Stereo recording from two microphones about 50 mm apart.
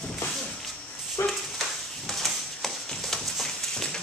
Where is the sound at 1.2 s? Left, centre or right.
Left.